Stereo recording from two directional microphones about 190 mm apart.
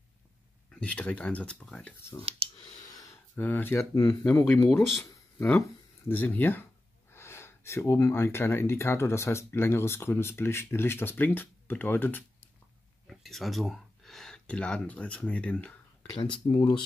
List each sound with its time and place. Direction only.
0.7 s speech: 5° left (ahead or behind)
2.2 s speech: 30° right (ahead or behind)
2.8 s speech: 20° left (ahead or behind)
4.3 s speech: 10° left (ahead or behind)
16.5 s speech: 25° left (ahead or behind)